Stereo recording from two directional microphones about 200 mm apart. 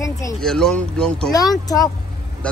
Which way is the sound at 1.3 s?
20° left (ahead or behind).